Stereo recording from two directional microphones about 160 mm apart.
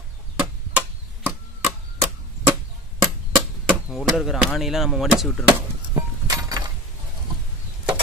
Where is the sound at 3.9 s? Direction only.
Centre (ahead or behind).